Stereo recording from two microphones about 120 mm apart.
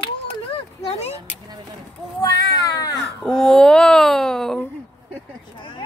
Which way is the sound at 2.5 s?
30° left (ahead or behind).